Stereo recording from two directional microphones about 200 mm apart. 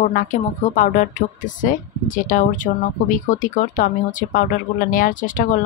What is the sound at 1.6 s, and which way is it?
Speech, 40° left (ahead or behind).